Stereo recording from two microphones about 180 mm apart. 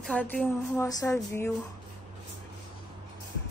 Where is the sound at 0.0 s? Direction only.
5° left (ahead or behind).